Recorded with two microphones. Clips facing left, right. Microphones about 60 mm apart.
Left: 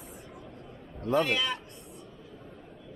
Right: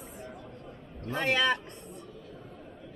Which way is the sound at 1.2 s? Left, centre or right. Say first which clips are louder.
Right 3 dB; right.